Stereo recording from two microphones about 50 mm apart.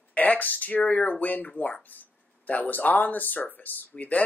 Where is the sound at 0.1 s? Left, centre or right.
Left.